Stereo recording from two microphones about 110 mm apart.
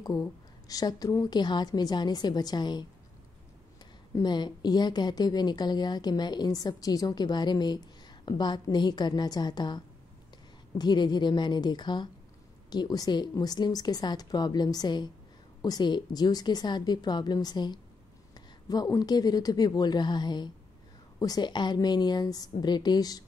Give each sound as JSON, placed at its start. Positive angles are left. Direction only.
{"t": 0.2, "sound": "speech", "side_deg": 35}
{"t": 4.1, "sound": "a woman's voice", "side_deg": 40}